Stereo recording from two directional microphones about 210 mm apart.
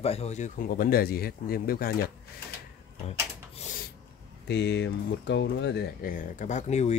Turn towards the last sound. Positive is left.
turn(degrees=35)  # may be behind; listen again after turning